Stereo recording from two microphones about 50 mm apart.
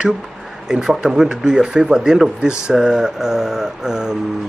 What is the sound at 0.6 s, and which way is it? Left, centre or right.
Speech, centre.